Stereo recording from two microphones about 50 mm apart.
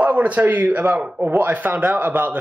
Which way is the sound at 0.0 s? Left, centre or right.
Right.